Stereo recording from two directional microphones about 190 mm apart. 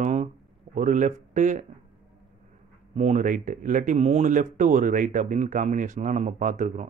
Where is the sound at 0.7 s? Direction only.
40° right (ahead or behind).